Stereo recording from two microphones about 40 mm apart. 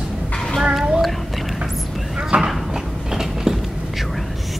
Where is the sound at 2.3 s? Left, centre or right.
Right.